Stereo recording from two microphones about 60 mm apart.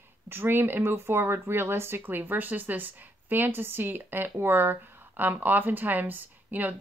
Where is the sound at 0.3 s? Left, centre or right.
Right.